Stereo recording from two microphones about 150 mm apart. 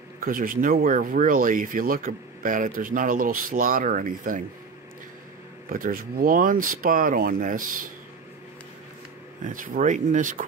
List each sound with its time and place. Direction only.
0.2 s speech: 65° right (ahead or behind)
5.7 s speech: 70° right (ahead or behind)
9.5 s speech: 60° right (ahead or behind)